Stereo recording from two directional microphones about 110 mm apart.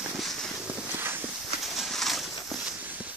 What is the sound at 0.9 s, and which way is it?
Walk, 20° right (ahead or behind).